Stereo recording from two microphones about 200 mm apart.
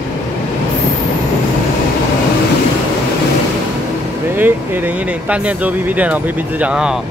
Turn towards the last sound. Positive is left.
turn(degrees=-5)  # may be behind; listen again after turning